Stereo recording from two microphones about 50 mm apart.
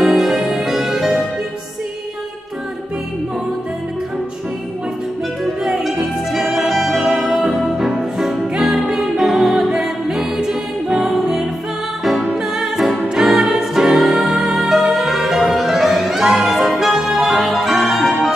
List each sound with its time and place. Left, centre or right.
0.0 s music: centre
5.4 s music: centre